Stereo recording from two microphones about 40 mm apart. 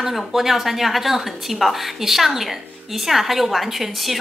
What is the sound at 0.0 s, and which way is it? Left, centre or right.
A woman's voice, centre.